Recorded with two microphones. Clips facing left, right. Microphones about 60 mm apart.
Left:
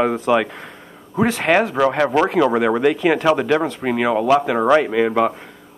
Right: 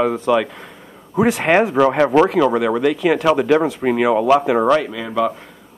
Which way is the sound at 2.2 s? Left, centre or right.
Centre.